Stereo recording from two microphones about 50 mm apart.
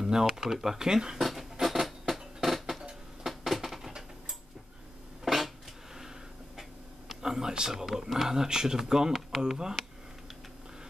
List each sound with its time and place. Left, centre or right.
0.0 s speech: centre
1.2 s music: centre
3.3 s a sound: centre
7.1 s speech: centre